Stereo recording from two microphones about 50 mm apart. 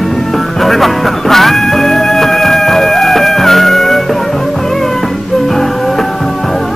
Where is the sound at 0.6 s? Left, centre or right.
Centre.